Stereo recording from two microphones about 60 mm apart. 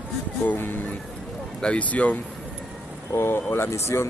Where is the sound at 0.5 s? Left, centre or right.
Left.